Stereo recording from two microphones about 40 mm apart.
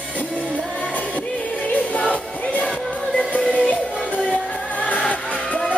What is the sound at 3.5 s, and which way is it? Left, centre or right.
Music, left.